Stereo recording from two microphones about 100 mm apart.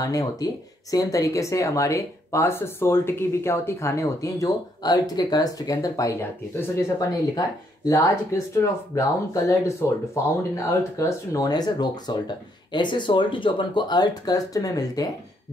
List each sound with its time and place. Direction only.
0.0 s speech: 35° left (ahead or behind)
7.9 s speech: 30° left (ahead or behind)